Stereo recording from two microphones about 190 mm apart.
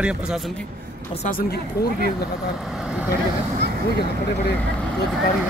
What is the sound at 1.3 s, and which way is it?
Speech, 55° left (ahead or behind).